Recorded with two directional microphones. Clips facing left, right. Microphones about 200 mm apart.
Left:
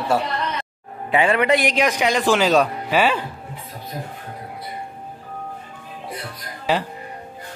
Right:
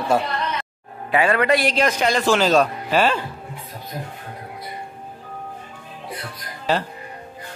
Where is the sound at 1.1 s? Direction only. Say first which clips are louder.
Even; 20° left (ahead or behind).